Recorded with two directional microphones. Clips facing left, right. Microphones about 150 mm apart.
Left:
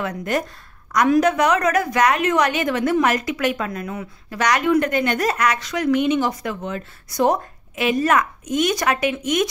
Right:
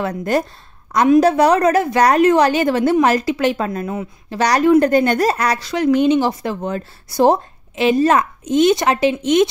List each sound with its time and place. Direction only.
0.0 s a woman's voice: 35° right (ahead or behind)
0.9 s a woman's voice: 20° right (ahead or behind)
1.2 s a woman's voice: 35° right (ahead or behind)